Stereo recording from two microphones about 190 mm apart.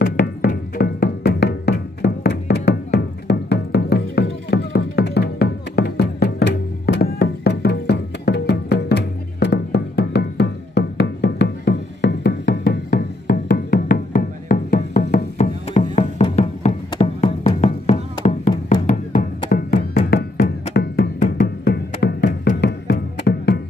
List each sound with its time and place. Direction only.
0.0 s music: 50° left (ahead or behind)